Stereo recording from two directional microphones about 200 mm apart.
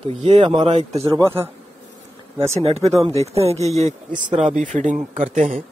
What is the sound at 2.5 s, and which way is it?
Speech, 30° right (ahead or behind).